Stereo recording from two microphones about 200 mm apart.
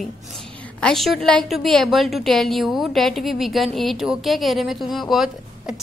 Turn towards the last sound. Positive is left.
turn(degrees=0)  # may be behind; listen again after turning